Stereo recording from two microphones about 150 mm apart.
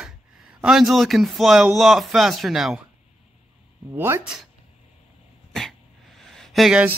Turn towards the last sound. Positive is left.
turn(degrees=0)  # may be behind; listen again after turning